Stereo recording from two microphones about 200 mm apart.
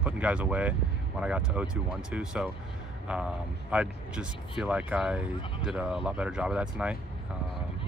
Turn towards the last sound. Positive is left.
turn(degrees=-5)  # may be behind; listen again after turning